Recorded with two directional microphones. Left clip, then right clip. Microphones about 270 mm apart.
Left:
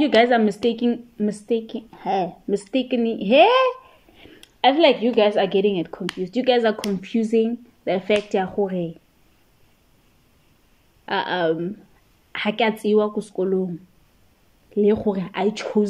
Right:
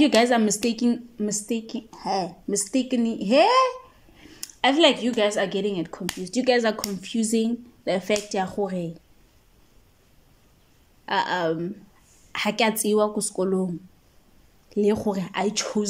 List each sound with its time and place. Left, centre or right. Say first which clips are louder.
0.0 s a woman's voice: left 3 dB; centre
11.1 s a woman's voice: left 2 dB; centre
14.7 s a woman's voice: left 4 dB; centre